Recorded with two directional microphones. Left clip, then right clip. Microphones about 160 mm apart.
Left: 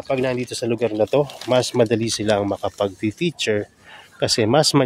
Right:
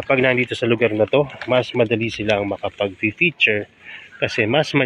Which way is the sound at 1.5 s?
40° left (ahead or behind).